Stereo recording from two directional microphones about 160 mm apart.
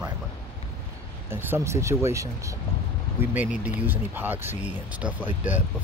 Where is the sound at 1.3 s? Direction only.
15° right (ahead or behind).